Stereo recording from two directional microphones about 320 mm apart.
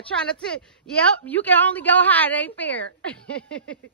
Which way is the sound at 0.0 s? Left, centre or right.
Centre.